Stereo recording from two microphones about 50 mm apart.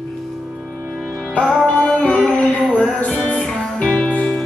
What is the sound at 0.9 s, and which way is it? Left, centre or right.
Music, centre.